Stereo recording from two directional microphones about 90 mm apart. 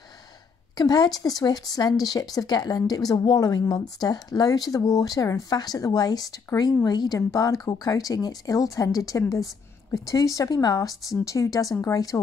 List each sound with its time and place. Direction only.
0.7 s speech: 50° left (ahead or behind)